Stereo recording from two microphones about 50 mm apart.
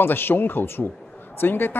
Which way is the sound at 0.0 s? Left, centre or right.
Left.